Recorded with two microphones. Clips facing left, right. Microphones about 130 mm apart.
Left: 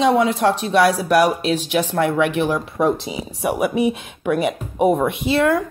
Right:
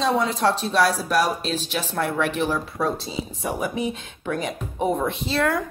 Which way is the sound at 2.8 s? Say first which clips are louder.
Left 9 dB; 15° left (ahead or behind).